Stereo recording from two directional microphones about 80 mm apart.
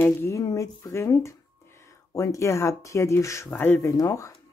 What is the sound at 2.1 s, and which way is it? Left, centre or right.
Speech, left.